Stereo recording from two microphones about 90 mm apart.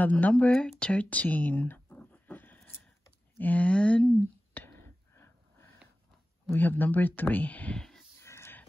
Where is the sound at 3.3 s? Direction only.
15° left (ahead or behind).